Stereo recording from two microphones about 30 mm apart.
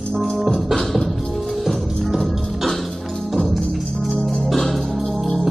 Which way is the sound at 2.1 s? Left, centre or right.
Centre.